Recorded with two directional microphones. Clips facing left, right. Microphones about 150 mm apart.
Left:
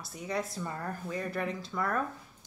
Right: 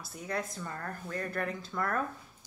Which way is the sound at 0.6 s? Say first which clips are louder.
Left 3 dB; 10° left (ahead or behind).